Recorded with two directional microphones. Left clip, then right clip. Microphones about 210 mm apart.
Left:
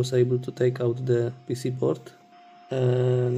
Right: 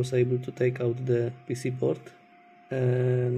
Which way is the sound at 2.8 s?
Centre (ahead or behind).